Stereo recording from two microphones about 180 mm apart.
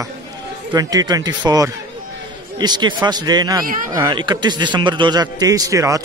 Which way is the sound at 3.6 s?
50° right (ahead or behind).